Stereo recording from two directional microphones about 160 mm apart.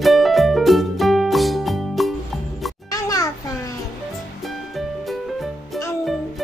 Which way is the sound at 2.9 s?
20° left (ahead or behind).